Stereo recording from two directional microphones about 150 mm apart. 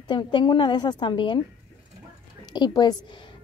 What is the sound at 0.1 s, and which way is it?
Speech, 30° left (ahead or behind).